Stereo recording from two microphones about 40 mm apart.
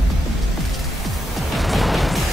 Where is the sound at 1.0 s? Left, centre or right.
Centre.